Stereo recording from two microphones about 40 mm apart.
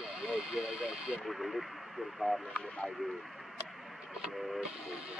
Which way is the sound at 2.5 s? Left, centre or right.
Left.